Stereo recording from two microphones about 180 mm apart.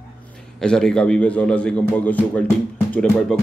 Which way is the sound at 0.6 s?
5° left (ahead or behind).